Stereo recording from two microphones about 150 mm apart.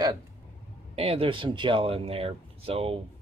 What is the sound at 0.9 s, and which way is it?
Speech, 40° right (ahead or behind).